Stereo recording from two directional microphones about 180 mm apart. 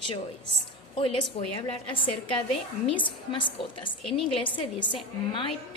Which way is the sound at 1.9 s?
30° left (ahead or behind).